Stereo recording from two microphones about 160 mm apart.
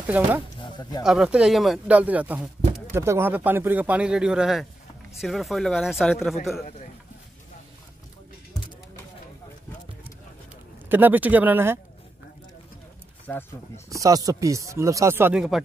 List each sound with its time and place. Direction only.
0.0 s speech: 10° right (ahead or behind)
0.6 s a sound: 25° left (ahead or behind)
1.0 s speech: 5° right (ahead or behind)
10.9 s speech: 10° right (ahead or behind)
13.3 s speech: 10° left (ahead or behind)
13.8 s speech: 20° right (ahead or behind)
15.3 s speech: centre (ahead or behind)